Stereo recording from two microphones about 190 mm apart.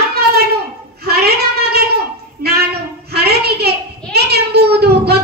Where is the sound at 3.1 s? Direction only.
55° right (ahead or behind).